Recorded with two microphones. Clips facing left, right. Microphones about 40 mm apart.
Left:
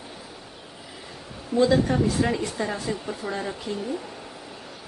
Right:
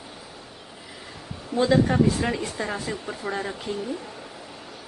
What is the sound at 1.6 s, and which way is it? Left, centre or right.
A woman's voice, centre.